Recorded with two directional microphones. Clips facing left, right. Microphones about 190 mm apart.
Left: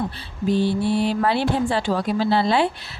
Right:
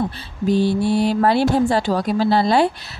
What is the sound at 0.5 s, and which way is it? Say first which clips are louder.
Speech: right 3 dB; 40° right (ahead or behind).